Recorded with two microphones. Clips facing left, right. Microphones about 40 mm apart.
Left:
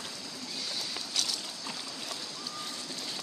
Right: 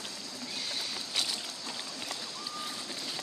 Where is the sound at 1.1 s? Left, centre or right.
Right.